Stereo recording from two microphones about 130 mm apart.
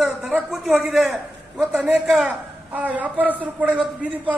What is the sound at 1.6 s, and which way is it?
A man's voice, 5° right (ahead or behind).